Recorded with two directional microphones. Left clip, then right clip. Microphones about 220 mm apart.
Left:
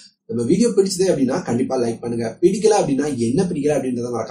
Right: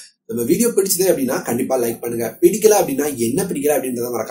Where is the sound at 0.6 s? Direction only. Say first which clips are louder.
Left 2 dB; 40° right (ahead or behind).